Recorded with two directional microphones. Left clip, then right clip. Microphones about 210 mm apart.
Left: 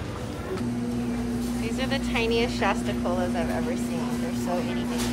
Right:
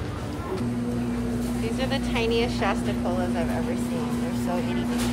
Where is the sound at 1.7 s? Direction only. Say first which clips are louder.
Even; 10° right (ahead or behind).